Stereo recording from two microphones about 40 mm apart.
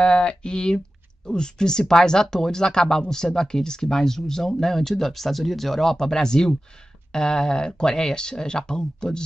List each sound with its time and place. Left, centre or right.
0.0 s speech: left